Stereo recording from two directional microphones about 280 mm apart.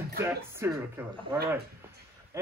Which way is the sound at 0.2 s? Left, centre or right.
Centre.